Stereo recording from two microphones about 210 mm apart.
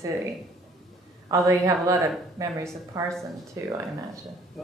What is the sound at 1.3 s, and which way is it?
A woman's voice, 15° right (ahead or behind).